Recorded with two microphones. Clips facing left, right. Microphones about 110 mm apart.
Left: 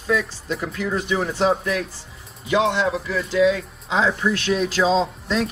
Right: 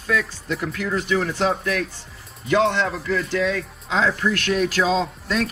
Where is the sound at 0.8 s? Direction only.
15° left (ahead or behind).